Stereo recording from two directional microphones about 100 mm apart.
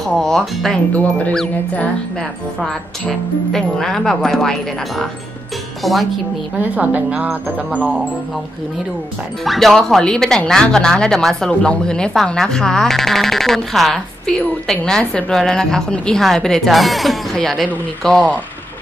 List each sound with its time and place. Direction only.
0.0 s speech: 5° left (ahead or behind)
6.6 s speech: 15° right (ahead or behind)
9.4 s speech: centre (ahead or behind)